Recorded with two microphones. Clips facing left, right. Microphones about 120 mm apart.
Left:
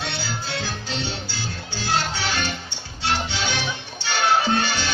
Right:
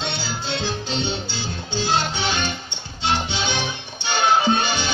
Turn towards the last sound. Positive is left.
turn(degrees=-20)  # may be behind; listen again after turning